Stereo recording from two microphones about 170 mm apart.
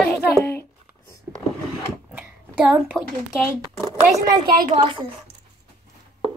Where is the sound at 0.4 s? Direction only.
15° left (ahead or behind).